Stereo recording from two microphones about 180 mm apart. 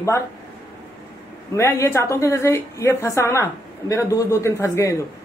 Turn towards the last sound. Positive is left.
turn(degrees=15)  # may be behind; listen again after turning